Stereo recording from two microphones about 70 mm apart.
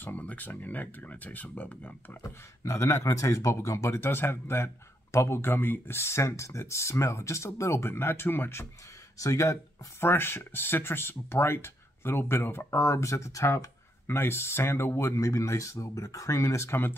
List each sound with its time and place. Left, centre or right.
0.0 s speech: left
2.2 s speech: left
9.2 s speech: left
14.0 s speech: left
15.1 s speech: left